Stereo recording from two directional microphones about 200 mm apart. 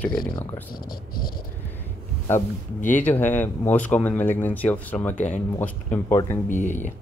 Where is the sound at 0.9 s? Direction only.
45° left (ahead or behind).